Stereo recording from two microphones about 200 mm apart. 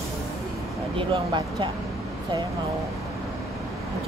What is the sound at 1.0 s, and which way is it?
Speech, 25° right (ahead or behind).